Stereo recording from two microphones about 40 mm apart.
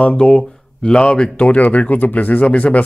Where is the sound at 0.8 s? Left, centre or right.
Left.